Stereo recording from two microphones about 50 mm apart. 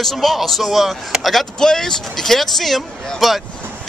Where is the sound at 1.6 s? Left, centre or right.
Centre.